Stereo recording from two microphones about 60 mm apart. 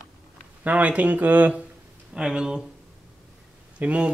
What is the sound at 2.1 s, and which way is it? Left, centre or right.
Speech, centre.